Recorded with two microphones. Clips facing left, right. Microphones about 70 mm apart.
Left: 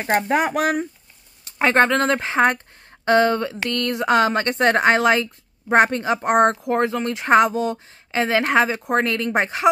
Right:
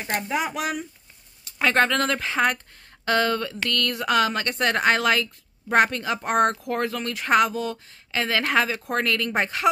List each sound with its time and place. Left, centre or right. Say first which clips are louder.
0.0 s speech: left 7 dB; left
1.6 s speech: left 4 dB; left